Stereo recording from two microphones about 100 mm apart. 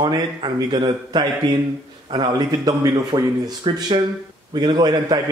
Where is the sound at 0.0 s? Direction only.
50° right (ahead or behind).